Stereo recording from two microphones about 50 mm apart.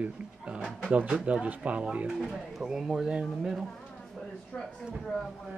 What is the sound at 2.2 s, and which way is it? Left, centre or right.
Speech, centre.